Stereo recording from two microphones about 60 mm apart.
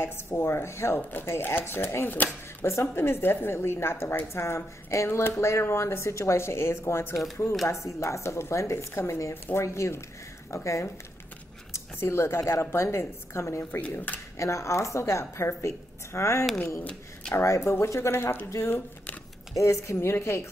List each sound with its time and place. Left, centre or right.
0.0 s a woman's voice: left
2.6 s a woman's voice: left
12.4 s a woman's voice: left
13.7 s speech: left
14.4 s a woman's voice: left
17.5 s a woman's voice: left
18.1 s speech: left
19.5 s a woman's voice: left